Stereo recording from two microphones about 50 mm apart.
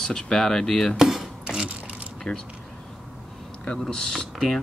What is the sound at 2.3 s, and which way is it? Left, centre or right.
Speech, left.